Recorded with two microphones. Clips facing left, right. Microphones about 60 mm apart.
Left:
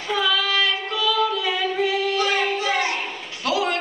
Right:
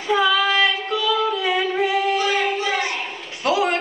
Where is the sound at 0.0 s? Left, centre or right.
Right.